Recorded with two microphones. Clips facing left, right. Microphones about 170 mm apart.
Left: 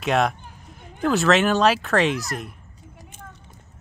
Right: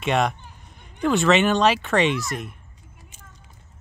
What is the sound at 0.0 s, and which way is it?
Speech, centre (ahead or behind).